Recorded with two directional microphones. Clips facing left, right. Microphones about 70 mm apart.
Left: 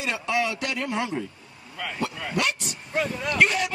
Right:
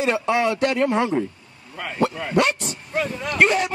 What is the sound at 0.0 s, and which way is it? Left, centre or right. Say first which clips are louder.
A man's voice: right 6 dB; right.